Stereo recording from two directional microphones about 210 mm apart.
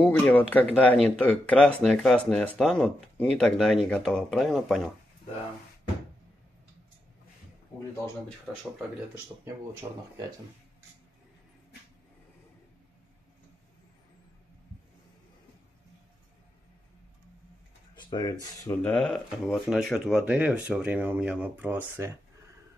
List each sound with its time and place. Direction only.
0.0 s speech: 10° left (ahead or behind)
8.5 s speech: 10° right (ahead or behind)
9.8 s speech: 20° right (ahead or behind)
17.9 s speech: 20° left (ahead or behind)
18.8 s speech: 5° left (ahead or behind)